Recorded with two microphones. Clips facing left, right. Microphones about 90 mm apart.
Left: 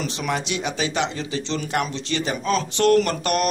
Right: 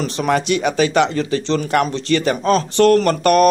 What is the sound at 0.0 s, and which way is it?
Speech, 45° right (ahead or behind).